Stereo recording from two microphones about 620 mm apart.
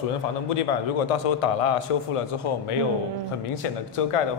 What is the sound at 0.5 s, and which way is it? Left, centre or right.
A man's voice, left.